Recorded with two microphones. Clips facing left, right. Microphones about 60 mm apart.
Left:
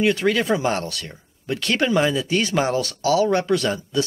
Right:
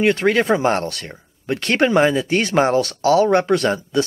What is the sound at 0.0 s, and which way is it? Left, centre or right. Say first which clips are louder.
Speech: right 3 dB; right.